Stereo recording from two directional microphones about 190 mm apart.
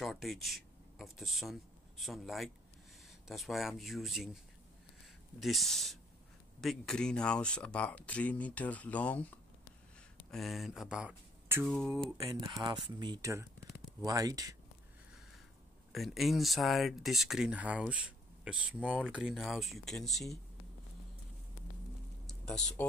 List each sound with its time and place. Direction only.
0.0 s speech: centre (ahead or behind)
5.4 s speech: centre (ahead or behind)
10.3 s speech: centre (ahead or behind)
11.6 s speech: centre (ahead or behind)
12.3 s speech: 20° right (ahead or behind)
15.9 s speech: centre (ahead or behind)
22.2 s a sound: 5° left (ahead or behind)